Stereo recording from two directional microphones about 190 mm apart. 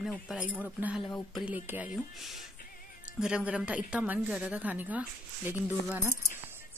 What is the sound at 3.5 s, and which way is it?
A woman's voice, 5° right (ahead or behind).